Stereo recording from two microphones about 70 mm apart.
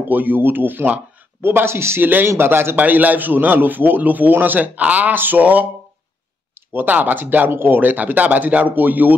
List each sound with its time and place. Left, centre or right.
0.1 s speech: right
6.7 s speech: right